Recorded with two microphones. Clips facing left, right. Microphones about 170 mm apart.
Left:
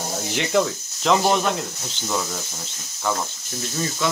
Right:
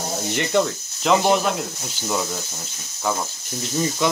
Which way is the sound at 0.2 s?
Centre (ahead or behind).